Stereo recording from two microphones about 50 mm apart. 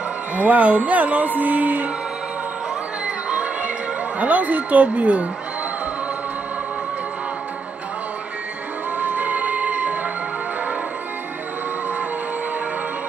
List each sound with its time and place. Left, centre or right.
0.4 s a woman's voice: right
3.3 s music: right
4.2 s a woman's voice: right
8.9 s music: right